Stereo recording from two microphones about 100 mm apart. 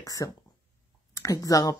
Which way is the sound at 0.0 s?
35° left (ahead or behind).